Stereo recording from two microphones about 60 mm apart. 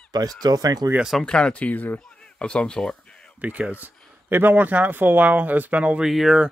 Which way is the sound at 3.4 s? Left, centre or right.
Right.